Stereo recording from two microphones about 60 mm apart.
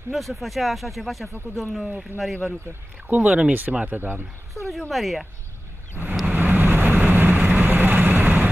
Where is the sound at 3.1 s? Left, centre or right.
Right.